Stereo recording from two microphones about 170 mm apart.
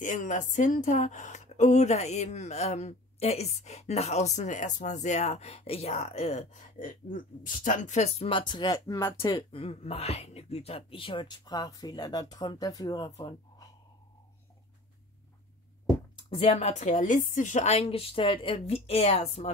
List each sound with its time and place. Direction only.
0.0 s a woman's voice: 50° left (ahead or behind); by 9.1 s 20° left (ahead or behind)
9.5 s speech: 35° left (ahead or behind)
16.3 s a woman's voice: 35° left (ahead or behind)